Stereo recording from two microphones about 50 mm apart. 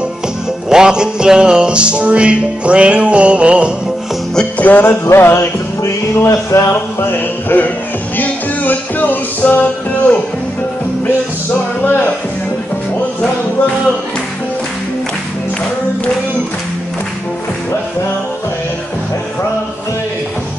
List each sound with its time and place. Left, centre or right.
0.7 s music: centre
4.6 s music: left
5.1 s music: left
5.8 s music: left
6.7 s music: left
11.8 s speech: left